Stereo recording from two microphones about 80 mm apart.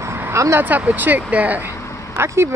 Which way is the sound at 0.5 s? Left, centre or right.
Right.